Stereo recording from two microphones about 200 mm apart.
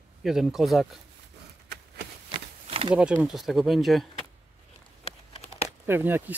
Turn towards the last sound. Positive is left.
turn(degrees=-10)  # may be behind; listen again after turning